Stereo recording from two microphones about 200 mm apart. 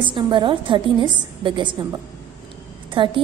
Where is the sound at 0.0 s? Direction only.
25° right (ahead or behind).